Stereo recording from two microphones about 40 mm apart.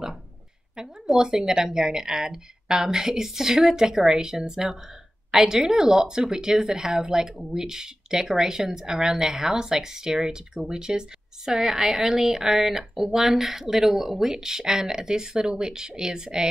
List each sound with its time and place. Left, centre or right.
1.2 s speech: centre